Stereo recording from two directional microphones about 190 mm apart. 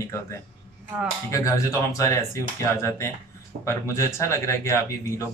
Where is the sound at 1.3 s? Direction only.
15° left (ahead or behind).